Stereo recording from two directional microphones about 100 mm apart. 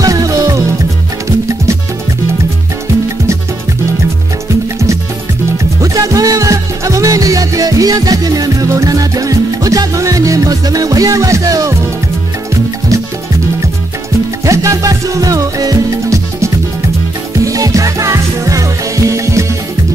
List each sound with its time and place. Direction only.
0.0 s music: 35° right (ahead or behind)
5.8 s music: 35° right (ahead or behind)
14.4 s music: 30° right (ahead or behind)